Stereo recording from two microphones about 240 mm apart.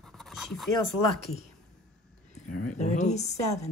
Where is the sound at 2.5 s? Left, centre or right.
Left.